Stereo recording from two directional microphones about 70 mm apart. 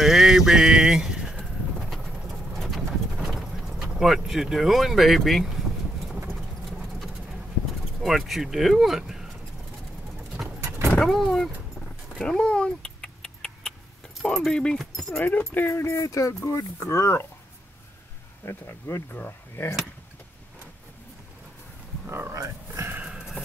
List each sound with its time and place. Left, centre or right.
0.0 s pigeon: centre
1.4 s bird: centre
6.2 s clip-clop: centre
8.0 s speech: centre
11.0 s speech: centre
12.2 s rodents: centre
14.3 s speech: centre
15.1 s speech: left
15.7 s speech: left
18.4 s speech: left
22.0 s a sound: right
22.3 s a sound: right